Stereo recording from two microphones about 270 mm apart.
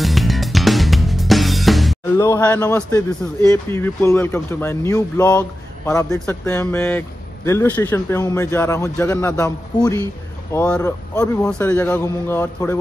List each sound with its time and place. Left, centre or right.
0.0 s music: centre
3.4 s speech: centre